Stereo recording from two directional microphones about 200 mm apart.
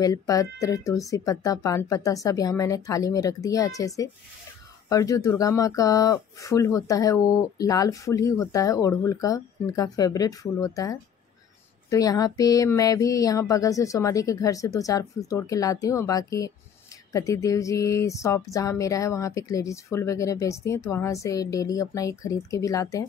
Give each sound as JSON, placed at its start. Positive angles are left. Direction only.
{"t": 0.0, "sound": "speech", "side_deg": 15}